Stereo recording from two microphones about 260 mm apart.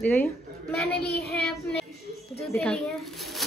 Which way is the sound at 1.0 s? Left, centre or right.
Left.